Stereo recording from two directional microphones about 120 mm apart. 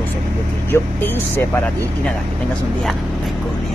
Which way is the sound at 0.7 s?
20° left (ahead or behind).